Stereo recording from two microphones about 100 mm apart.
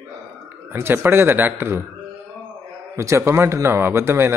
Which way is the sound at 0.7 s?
25° right (ahead or behind).